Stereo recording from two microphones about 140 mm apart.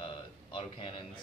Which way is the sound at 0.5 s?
35° left (ahead or behind).